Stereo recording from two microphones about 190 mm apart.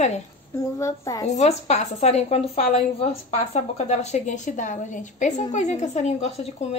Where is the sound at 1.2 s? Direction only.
35° left (ahead or behind).